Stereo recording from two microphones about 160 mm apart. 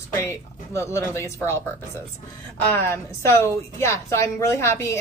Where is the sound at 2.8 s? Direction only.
15° left (ahead or behind).